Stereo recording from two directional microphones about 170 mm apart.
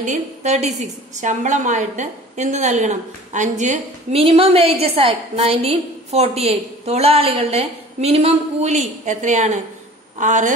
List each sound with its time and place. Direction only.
0.0 s a woman's voice: 45° right (ahead or behind)